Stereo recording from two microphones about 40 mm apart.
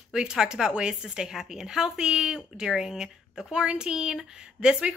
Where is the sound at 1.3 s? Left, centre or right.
Centre.